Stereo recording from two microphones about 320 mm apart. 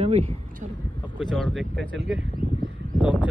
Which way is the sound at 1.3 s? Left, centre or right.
Centre.